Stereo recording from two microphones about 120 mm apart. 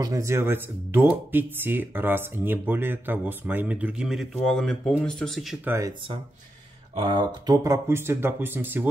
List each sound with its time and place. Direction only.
0.0 s speech: 25° right (ahead or behind); by 5.6 s centre (ahead or behind)
5.7 s speech: 25° right (ahead or behind)
7.0 s speech: 40° right (ahead or behind); by 8.8 s 20° right (ahead or behind)